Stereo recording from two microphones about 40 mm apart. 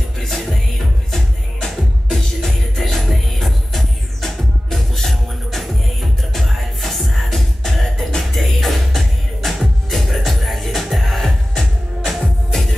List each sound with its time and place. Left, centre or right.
0.2 s music: centre